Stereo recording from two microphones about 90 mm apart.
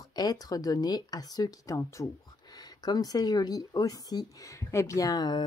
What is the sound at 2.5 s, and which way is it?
A woman's voice, 50° left (ahead or behind).